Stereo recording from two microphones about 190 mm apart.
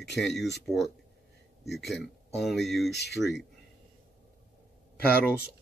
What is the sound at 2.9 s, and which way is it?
Speech, 65° left (ahead or behind).